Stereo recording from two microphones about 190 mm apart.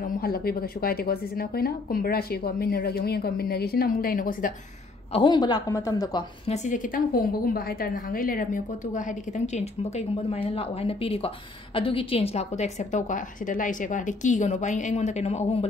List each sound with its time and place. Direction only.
0.2 s a woman's voice: 55° left (ahead or behind)
5.1 s a woman's voice: 25° left (ahead or behind)
6.4 s a woman's voice: 35° left (ahead or behind)